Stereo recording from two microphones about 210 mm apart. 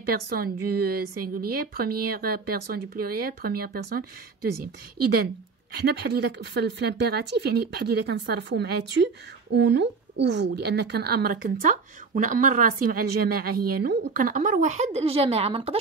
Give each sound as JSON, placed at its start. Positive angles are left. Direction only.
{"t": 0.0, "sound": "a woman's voice", "side_deg": -45}